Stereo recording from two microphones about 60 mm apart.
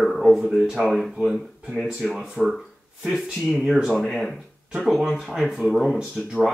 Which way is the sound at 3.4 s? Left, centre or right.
Centre.